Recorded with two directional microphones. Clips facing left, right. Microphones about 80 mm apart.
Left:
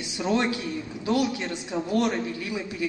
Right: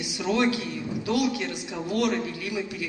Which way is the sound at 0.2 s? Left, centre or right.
Left.